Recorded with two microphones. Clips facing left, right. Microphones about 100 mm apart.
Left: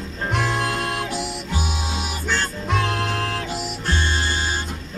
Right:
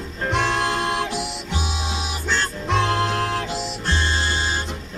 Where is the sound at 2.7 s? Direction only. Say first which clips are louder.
Right 3 dB; 20° right (ahead or behind).